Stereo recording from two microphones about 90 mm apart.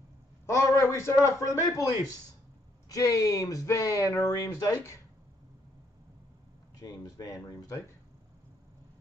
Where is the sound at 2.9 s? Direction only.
40° left (ahead or behind).